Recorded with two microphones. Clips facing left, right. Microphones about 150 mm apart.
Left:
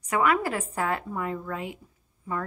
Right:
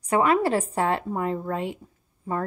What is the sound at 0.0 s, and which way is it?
Speech, 30° right (ahead or behind).